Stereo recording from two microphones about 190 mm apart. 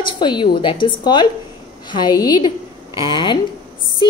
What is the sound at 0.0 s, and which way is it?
A woman's voice, 25° left (ahead or behind).